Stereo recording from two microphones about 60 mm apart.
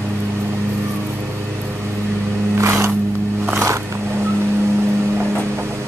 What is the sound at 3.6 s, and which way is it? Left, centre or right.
Vehicle, right.